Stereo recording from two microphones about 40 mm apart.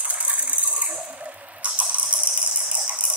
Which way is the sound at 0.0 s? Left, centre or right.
Right.